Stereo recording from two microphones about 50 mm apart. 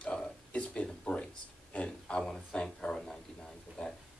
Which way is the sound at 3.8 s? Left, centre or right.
Left.